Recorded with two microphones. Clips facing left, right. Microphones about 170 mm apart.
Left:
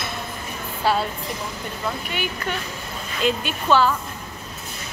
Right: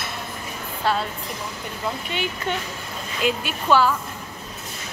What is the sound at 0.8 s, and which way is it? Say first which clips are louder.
Speech: left 2 dB; 5° left (ahead or behind).